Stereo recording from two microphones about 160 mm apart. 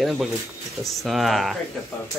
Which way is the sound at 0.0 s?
Centre (ahead or behind).